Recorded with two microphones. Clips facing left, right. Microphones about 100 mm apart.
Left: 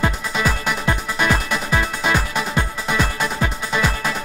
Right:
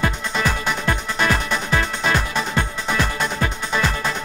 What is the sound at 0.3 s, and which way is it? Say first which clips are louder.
Music: left 1 dB; 5° left (ahead or behind).